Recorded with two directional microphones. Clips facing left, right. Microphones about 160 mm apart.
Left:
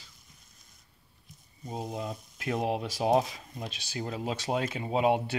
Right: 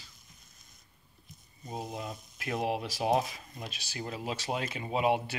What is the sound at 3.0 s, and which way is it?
Speech, 30° left (ahead or behind).